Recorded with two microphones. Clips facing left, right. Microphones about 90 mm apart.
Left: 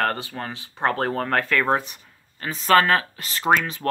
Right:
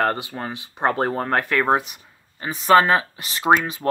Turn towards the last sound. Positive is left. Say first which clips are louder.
# right 2 dB
turn(degrees=-15)  # may be behind; listen again after turning